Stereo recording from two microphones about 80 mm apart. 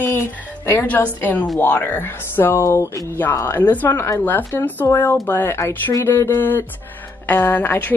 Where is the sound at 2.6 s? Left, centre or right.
Left.